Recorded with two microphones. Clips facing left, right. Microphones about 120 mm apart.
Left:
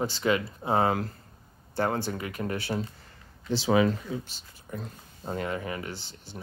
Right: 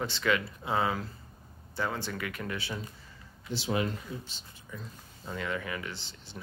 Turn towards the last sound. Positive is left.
turn(degrees=45)  # may be behind; listen again after turning